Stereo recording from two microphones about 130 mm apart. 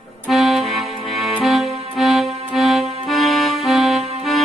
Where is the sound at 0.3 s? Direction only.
Centre (ahead or behind).